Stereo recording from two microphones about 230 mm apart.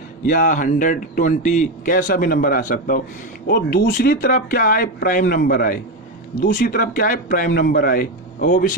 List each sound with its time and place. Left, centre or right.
0.3 s a man's voice: left